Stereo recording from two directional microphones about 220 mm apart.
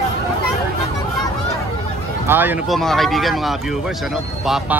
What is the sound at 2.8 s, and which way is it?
Speech, centre (ahead or behind).